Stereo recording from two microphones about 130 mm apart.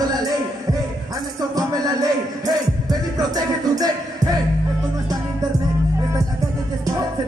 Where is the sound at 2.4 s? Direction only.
30° right (ahead or behind).